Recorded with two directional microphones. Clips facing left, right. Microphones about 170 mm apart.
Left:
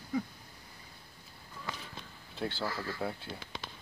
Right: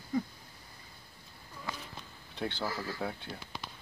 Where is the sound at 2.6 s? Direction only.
10° right (ahead or behind).